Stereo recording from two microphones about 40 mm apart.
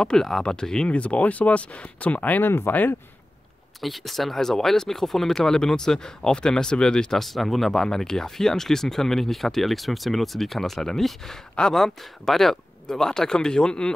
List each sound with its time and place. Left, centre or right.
0.0 s speech: centre
0.8 s speech: left
2.4 s speech: left
3.8 s speech: centre
7.2 s speech: centre; by 13.9 s left